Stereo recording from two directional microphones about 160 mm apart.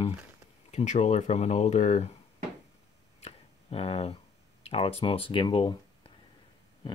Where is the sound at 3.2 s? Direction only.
40° left (ahead or behind).